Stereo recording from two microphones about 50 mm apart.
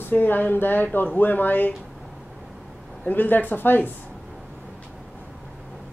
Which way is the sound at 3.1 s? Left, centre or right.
Left.